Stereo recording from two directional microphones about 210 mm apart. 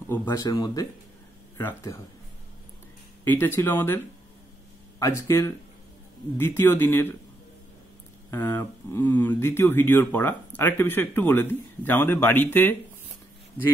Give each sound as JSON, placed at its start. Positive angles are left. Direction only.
{"t": 0.0, "sound": "speech", "side_deg": 10}
{"t": 3.3, "sound": "speech", "side_deg": 10}
{"t": 8.3, "sound": "speech", "side_deg": 15}